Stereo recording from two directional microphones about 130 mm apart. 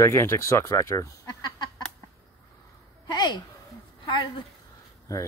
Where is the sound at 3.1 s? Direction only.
30° left (ahead or behind).